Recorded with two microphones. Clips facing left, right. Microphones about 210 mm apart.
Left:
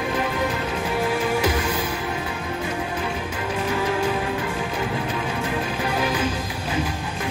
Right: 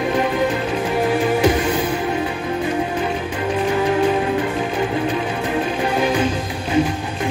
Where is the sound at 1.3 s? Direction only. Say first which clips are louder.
Right 6 dB; 30° right (ahead or behind).